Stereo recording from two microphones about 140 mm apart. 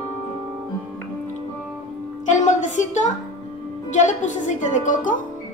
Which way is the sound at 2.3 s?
60° left (ahead or behind).